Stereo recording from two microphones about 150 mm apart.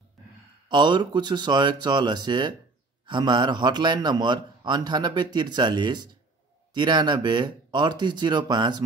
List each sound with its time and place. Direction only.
0.7 s a man's voice: 30° right (ahead or behind)